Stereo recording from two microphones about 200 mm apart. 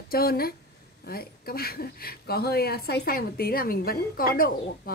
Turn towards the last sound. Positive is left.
turn(degrees=45)  # may be behind; listen again after turning